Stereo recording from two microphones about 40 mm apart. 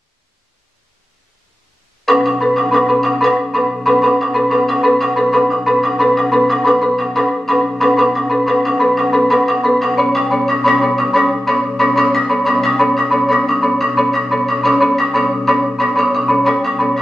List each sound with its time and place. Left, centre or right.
2.2 s marimba: centre
13.1 s music: centre